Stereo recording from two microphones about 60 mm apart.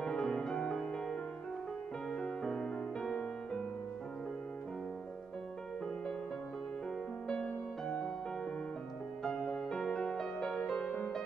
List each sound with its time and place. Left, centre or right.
0.0 s music: centre
2.1 s music: centre
7.2 s music: centre
9.2 s music: centre